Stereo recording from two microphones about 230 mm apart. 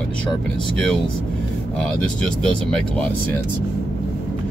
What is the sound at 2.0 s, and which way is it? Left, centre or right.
Speech, centre.